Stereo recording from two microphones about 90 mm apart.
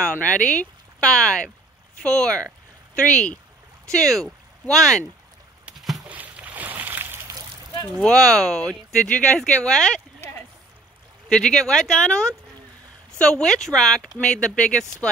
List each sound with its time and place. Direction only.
0.0 s speech: 15° left (ahead or behind)
6.0 s boat: 15° right (ahead or behind)
8.0 s speech: 5° left (ahead or behind)
11.3 s speech: 10° left (ahead or behind)
13.2 s speech: 10° left (ahead or behind)